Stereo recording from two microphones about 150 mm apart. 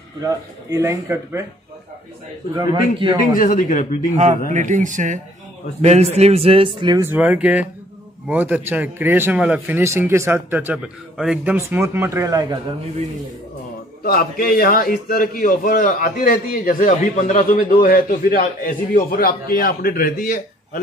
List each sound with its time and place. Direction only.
0.2 s a man's voice: 20° right (ahead or behind)
3.2 s speech: 65° left (ahead or behind)
4.5 s speech: 55° right (ahead or behind)
5.8 s a man's voice: 45° right (ahead or behind); by 7.1 s 30° right (ahead or behind)
7.1 s a man's voice: 10° right (ahead or behind)
11.5 s a man's voice: 15° right (ahead or behind)
14.0 s a man's voice: 80° left